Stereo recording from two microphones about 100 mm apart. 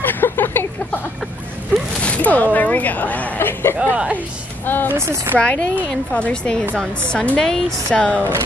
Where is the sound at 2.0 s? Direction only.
15° left (ahead or behind).